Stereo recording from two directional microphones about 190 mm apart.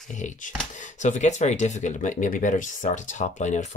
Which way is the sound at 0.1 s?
40° left (ahead or behind).